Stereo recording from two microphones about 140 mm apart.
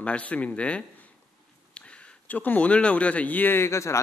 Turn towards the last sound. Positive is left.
turn(degrees=20)  # may be behind; listen again after turning